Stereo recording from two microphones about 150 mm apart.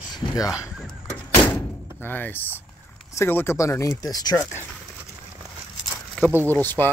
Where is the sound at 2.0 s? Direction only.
10° left (ahead or behind).